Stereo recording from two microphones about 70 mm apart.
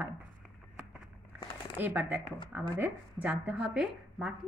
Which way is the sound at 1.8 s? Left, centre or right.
Right.